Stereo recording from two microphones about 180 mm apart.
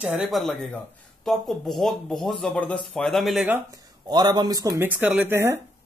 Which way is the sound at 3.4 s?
15° right (ahead or behind).